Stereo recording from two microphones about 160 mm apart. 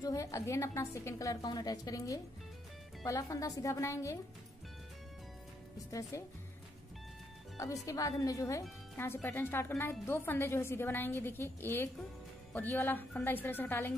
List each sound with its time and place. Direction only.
0.0 s a woman's voice: 20° left (ahead or behind)
5.9 s a woman's voice: 20° left (ahead or behind)
7.5 s a woman's voice: 20° left (ahead or behind)